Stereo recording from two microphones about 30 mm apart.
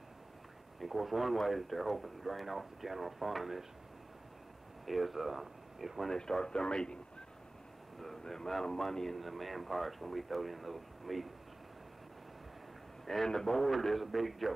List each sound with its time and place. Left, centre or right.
0.7 s speech: centre
4.8 s speech: centre
6.0 s a man's voice: centre
8.2 s speech: centre
13.0 s a man's voice: centre